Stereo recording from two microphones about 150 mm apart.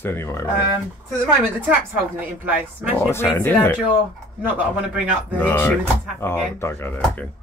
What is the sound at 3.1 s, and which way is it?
Speech, 15° left (ahead or behind).